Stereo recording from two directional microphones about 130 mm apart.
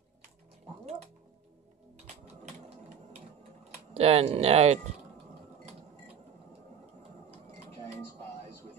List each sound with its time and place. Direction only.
3.9 s speech: 50° right (ahead or behind)